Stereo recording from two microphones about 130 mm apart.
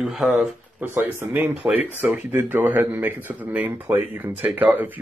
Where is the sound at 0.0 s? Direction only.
Centre (ahead or behind).